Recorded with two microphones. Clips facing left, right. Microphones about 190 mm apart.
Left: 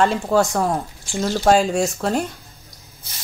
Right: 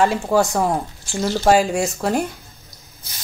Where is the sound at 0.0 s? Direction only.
10° right (ahead or behind).